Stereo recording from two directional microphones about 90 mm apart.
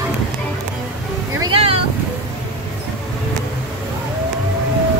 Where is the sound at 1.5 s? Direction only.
90° right.